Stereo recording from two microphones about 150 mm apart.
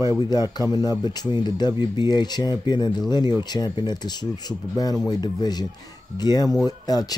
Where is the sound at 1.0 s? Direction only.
30° left (ahead or behind).